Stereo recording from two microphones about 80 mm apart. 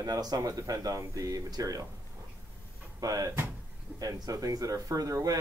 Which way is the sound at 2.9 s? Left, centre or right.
Right.